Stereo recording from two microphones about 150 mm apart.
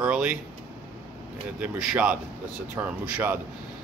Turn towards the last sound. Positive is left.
turn(degrees=-10)  # may be behind; listen again after turning